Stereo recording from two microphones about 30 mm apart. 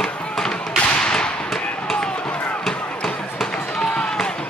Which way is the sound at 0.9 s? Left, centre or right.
Left.